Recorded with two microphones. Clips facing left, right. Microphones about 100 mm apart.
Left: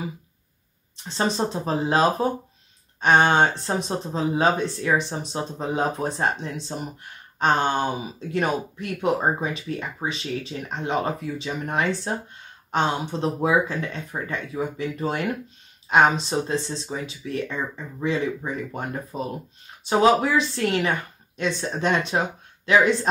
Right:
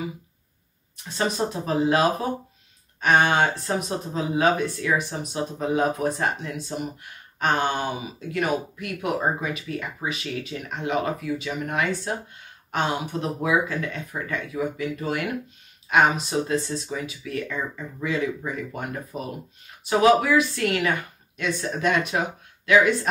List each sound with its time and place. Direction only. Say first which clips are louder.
1.0 s speech: left 1 dB; 30° left (ahead or behind)